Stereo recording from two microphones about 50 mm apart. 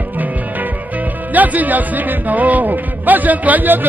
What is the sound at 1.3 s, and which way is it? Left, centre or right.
Speech, right.